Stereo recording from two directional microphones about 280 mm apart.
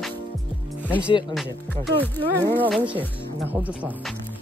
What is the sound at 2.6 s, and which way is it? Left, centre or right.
Music, centre.